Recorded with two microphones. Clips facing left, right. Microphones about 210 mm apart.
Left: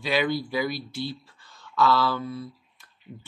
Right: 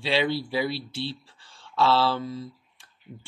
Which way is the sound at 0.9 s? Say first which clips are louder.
Even; 70° right (ahead or behind).